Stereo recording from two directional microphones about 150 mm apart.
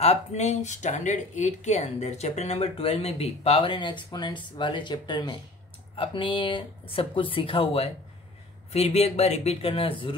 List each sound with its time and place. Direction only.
0.0 s speech: 50° left (ahead or behind)